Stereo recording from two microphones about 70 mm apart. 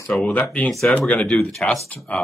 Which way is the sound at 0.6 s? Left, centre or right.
Centre.